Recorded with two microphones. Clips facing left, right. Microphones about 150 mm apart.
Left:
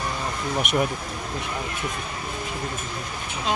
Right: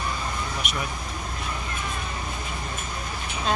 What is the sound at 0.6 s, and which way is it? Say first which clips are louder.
Speech: left 13 dB; 60° left (ahead or behind).